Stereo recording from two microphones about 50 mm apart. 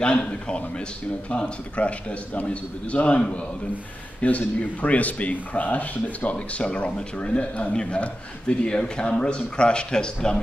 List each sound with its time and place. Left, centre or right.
0.0 s speech: left